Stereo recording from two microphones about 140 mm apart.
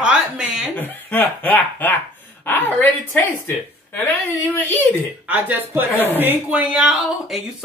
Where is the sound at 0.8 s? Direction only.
15° left (ahead or behind).